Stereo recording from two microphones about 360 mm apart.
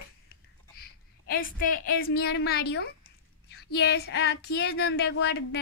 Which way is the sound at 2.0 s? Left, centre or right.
Left.